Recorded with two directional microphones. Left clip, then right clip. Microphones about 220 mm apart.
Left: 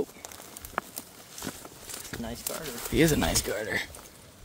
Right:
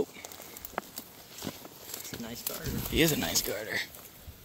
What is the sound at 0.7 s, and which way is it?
Walk, 5° left (ahead or behind).